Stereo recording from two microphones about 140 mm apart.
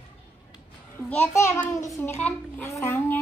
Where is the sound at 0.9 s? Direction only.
10° left (ahead or behind).